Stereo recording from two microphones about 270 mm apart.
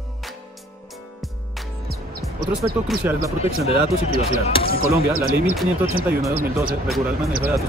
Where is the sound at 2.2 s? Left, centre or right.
Right.